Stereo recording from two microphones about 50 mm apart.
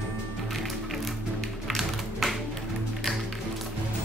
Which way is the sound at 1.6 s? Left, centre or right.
Centre.